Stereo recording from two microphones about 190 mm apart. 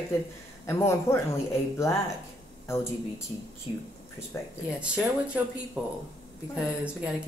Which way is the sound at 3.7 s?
30° left (ahead or behind).